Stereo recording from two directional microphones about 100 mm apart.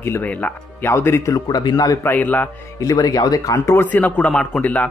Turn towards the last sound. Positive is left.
turn(degrees=15)  # may be behind; listen again after turning